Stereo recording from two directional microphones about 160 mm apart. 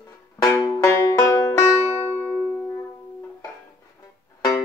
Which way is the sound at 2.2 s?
10° left (ahead or behind).